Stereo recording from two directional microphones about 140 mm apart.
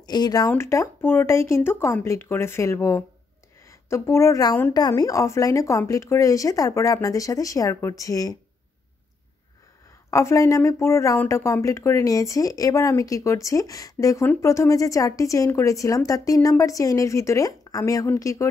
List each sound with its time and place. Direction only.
0.0 s a woman's voice: 30° left (ahead or behind)
10.1 s speech: 20° left (ahead or behind)